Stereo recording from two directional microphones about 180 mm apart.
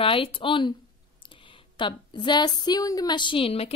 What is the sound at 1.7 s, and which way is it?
Speech, 25° left (ahead or behind).